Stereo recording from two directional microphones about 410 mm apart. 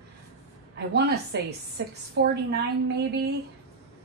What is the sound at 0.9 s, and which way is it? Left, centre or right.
Speech, right.